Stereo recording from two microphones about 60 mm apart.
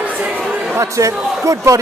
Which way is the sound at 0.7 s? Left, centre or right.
Right.